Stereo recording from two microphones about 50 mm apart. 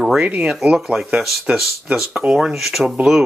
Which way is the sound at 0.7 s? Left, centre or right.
Centre.